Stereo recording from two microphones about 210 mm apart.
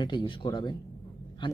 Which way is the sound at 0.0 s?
20° left (ahead or behind).